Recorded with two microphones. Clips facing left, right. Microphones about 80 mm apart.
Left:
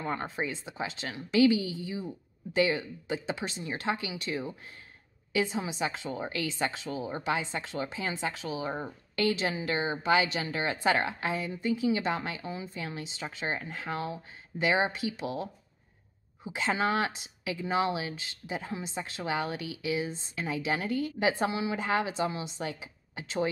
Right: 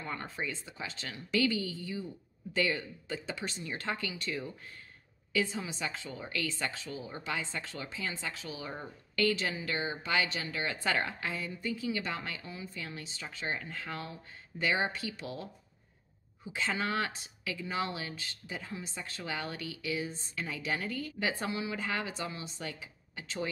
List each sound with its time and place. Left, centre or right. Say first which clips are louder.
0.0 s speech: left 6 dB; left
0.5 s a woman's voice: left 5 dB; centre
6.0 s a woman's voice: left 4 dB; left
9.1 s a woman's voice: left 2 dB; centre